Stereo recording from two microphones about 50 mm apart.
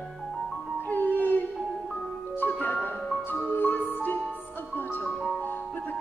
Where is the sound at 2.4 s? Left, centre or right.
Left.